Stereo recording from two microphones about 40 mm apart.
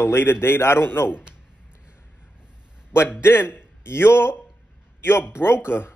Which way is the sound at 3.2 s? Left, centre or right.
Left.